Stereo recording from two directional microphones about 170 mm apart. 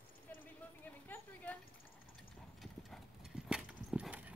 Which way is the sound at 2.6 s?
Centre (ahead or behind).